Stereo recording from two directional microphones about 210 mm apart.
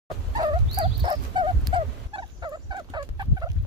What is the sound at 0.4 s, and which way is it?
Turkey, 20° right (ahead or behind).